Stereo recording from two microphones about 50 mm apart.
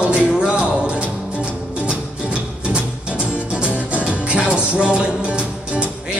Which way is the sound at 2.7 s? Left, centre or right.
Right.